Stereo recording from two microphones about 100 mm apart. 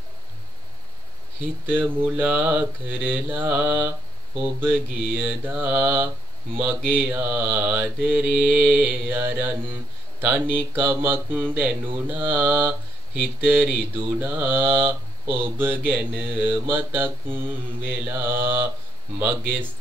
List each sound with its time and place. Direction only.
1.7 s speech: 20° right (ahead or behind)
6.6 s mantra: 20° right (ahead or behind)
9.1 s speech: 20° right (ahead or behind)
13.4 s mantra: 15° right (ahead or behind)
14.1 s speech: 20° right (ahead or behind)